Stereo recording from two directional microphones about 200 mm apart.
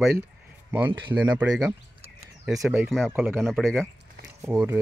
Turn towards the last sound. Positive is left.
turn(degrees=-15)  # may be behind; listen again after turning